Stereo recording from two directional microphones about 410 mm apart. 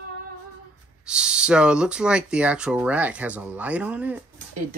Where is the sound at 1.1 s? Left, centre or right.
Centre.